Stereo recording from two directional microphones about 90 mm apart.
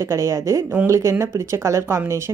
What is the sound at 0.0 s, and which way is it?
Speech, 35° right (ahead or behind).